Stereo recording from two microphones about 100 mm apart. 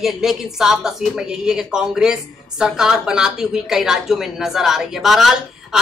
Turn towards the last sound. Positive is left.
turn(degrees=0)  # may be behind; listen again after turning